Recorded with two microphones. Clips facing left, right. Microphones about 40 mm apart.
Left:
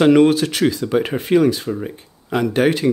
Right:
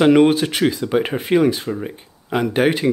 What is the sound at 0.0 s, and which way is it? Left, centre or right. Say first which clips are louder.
Speech: even; centre.